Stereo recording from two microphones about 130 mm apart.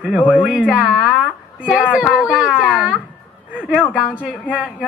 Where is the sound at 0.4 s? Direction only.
10° right (ahead or behind).